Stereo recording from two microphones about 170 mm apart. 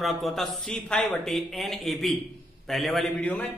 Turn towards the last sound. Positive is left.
turn(degrees=5)  # may be behind; listen again after turning